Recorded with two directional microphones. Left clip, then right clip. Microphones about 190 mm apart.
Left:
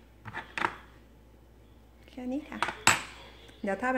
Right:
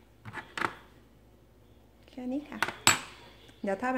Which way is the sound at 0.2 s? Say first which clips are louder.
Left 1 dB; 15° right (ahead or behind).